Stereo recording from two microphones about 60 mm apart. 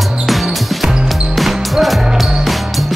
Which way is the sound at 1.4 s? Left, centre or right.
Centre.